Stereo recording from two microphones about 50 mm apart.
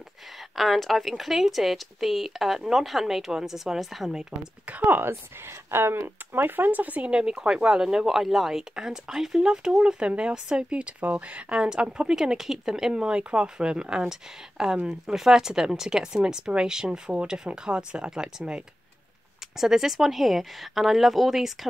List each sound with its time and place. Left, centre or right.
0.6 s speech: centre
4.6 s speech: right
5.7 s speech: right
7.1 s speech: centre
19.6 s speech: centre